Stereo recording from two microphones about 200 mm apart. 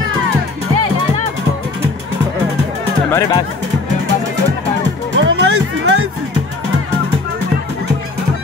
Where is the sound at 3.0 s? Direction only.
15° left (ahead or behind).